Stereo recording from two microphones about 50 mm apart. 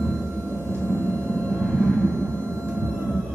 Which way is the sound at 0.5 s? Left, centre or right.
Right.